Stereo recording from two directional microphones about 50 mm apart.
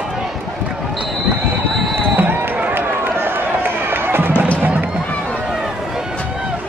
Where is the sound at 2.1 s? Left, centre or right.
Right.